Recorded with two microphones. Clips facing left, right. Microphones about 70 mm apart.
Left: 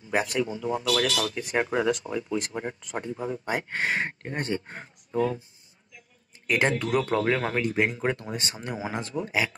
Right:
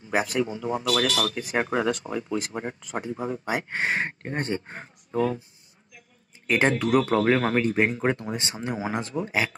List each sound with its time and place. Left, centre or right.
0.1 s a man's voice: centre
0.4 s speech: right
1.6 s speech: centre
2.3 s speech: centre
3.7 s speech: right
5.1 s speech: right
6.4 s speech: right
6.8 s speech: centre; by 9.5 s right